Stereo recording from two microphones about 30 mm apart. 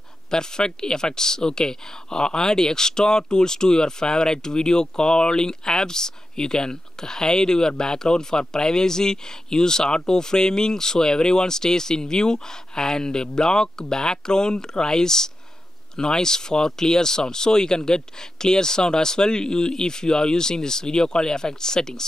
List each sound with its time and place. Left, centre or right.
0.3 s speech: left